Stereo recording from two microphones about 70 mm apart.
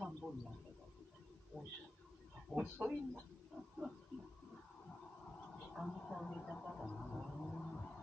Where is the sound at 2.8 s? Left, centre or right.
Right.